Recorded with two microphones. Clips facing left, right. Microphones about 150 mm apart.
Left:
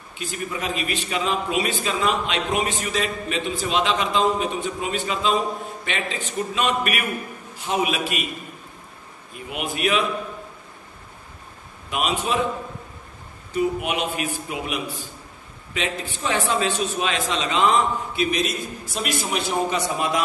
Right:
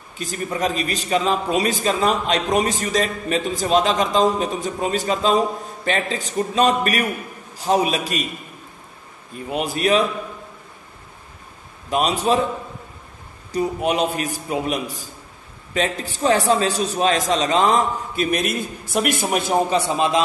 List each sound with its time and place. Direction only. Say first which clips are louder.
0.2 s a man's voice: right 5 dB; 40° right (ahead or behind)
9.5 s a man's voice: right 5 dB; 35° right (ahead or behind)
11.9 s a man's voice: right 5 dB; 35° right (ahead or behind)
13.5 s a man's voice: right 2 dB; 35° right (ahead or behind); by 19.4 s 55° right (ahead or behind)
19.7 s a man's voice: right 4 dB; 25° right (ahead or behind)